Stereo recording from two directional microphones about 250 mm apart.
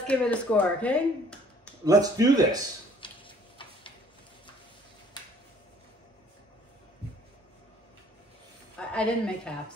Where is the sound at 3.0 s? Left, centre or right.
Centre.